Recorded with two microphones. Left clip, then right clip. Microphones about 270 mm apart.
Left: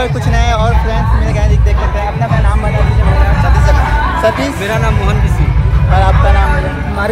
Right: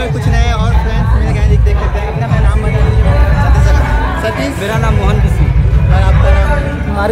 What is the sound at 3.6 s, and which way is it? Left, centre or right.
Chatter, centre.